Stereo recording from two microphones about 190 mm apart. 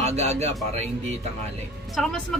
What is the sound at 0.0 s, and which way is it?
Music, 35° right (ahead or behind).